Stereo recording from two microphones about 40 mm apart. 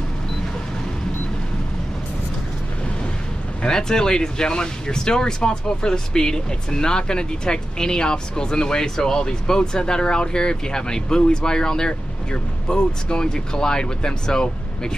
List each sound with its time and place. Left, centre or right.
3.6 s speech: centre